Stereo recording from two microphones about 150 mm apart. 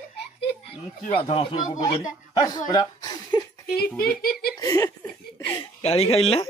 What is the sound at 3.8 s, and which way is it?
Speech, 5° left (ahead or behind).